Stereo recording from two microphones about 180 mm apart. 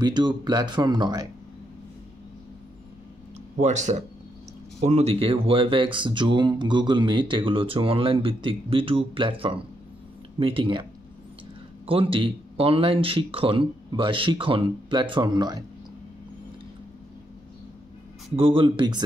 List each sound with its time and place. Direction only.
0.0 s speech: 25° right (ahead or behind)
3.5 s speech: 40° right (ahead or behind); by 15.6 s 25° right (ahead or behind)
18.3 s speech: 30° right (ahead or behind)